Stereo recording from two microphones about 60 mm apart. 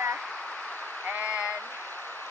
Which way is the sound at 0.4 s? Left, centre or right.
Centre.